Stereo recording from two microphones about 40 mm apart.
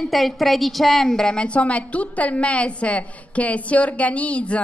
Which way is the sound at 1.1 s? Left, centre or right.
Left.